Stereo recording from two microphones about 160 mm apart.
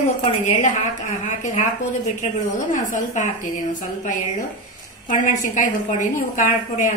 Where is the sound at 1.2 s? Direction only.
50° left (ahead or behind).